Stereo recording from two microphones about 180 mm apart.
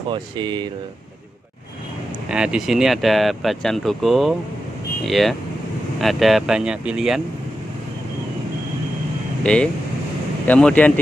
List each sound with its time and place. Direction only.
0.1 s speech: 25° right (ahead or behind)
2.2 s speech: 5° right (ahead or behind)
9.4 s speech: 5° left (ahead or behind)